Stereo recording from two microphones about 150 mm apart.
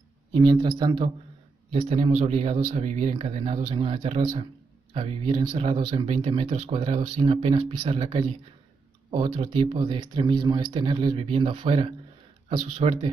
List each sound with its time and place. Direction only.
0.3 s speech: 35° right (ahead or behind)